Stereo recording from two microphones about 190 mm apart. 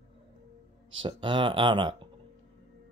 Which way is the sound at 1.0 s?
25° right (ahead or behind).